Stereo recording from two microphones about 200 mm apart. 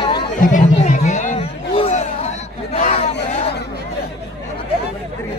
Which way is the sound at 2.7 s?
35° left (ahead or behind).